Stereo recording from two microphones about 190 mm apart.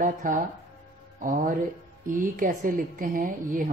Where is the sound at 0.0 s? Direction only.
45° right (ahead or behind).